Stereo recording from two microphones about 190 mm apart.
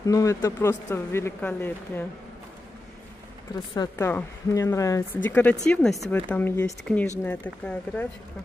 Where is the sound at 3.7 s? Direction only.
15° left (ahead or behind).